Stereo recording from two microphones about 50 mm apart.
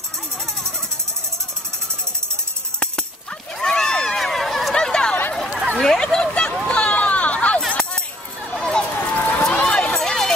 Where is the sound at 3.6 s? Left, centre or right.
Centre.